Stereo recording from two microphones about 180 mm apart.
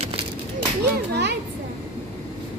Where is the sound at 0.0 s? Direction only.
30° right (ahead or behind).